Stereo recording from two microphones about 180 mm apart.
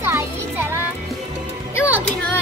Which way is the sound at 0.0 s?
10° right (ahead or behind).